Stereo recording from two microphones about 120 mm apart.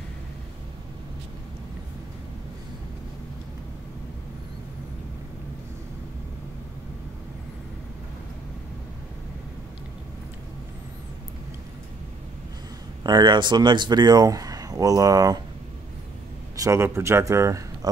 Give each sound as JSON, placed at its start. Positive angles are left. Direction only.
{"t": 13.0, "sound": "speech", "side_deg": -40}
{"t": 16.5, "sound": "a man's voice", "side_deg": -25}